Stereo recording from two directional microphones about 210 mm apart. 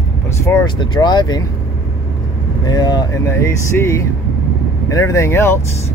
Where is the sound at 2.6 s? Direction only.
20° left (ahead or behind).